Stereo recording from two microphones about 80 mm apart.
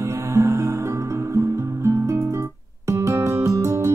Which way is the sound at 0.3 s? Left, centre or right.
Right.